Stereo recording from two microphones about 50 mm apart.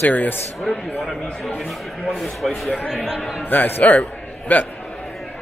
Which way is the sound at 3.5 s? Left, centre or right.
Left.